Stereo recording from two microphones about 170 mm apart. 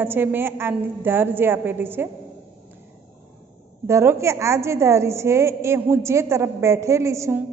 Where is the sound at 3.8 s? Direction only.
15° right (ahead or behind).